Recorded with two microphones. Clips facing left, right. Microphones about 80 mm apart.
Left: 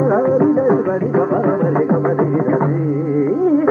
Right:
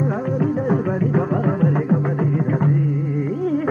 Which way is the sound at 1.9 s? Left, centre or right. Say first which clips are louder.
Left 5 dB; left.